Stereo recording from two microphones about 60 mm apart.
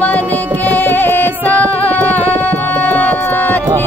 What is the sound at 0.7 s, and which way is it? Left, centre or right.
Music, left.